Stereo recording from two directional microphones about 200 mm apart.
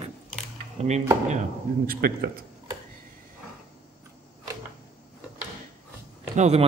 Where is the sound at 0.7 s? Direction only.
35° right (ahead or behind).